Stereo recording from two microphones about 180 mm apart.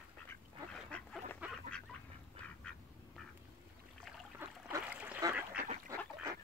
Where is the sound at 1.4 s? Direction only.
10° right (ahead or behind).